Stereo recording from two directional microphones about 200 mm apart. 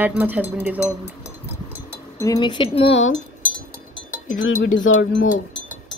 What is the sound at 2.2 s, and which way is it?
Speech, 20° left (ahead or behind).